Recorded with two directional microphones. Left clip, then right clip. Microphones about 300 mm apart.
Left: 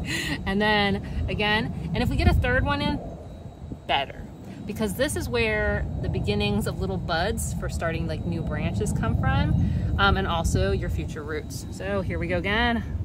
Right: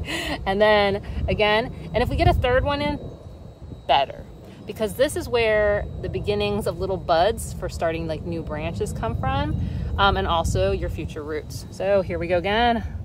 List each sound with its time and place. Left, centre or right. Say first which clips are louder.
0.0 s speech: right 2 dB; centre
11.8 s speech: right 8 dB; right